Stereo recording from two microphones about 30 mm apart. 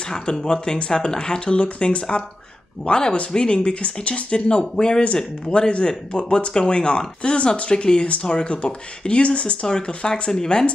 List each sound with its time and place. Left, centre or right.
0.1 s speech: left
2.9 s speech: left
5.0 s speech: left